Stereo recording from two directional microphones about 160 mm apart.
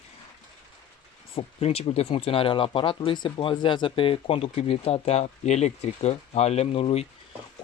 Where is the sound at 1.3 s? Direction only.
40° left (ahead or behind).